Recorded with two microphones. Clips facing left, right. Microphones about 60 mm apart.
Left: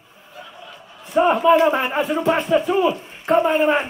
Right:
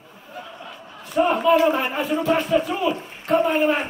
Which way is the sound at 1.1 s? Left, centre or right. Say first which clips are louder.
Left 3 dB; left.